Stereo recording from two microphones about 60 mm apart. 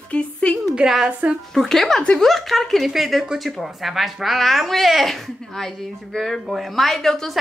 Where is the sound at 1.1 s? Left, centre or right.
Right.